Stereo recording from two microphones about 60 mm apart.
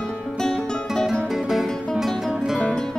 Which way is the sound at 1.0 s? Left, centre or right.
Centre.